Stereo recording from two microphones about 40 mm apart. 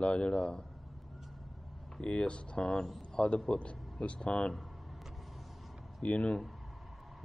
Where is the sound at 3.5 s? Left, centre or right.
Left.